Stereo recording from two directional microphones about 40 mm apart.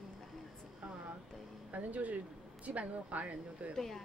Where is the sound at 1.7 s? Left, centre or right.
Right.